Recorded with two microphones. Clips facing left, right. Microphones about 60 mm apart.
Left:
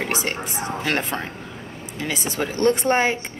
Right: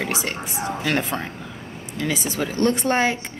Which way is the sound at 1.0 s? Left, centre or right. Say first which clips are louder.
Right 1 dB; centre.